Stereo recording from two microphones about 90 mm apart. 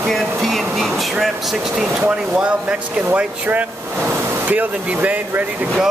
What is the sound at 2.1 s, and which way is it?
Speech, 10° right (ahead or behind).